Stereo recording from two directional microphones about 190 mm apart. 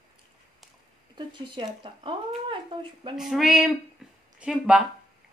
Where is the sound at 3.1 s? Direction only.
Centre (ahead or behind).